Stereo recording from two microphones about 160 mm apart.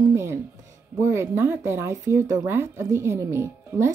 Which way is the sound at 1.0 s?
15° right (ahead or behind).